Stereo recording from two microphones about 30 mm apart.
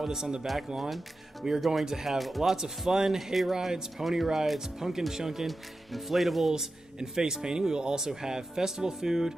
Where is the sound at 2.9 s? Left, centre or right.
Right.